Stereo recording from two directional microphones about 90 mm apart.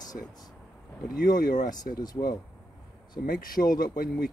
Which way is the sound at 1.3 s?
50° left (ahead or behind).